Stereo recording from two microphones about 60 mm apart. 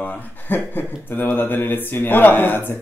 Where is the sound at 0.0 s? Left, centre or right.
Left.